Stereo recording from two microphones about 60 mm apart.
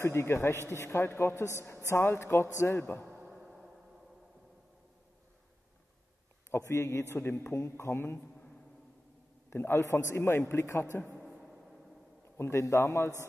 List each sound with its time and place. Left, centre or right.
0.0 s a man's voice: left
3.3 s a sound: centre
6.5 s a man's voice: left
9.5 s a man's voice: left
11.2 s a sound: centre
12.4 s a man's voice: left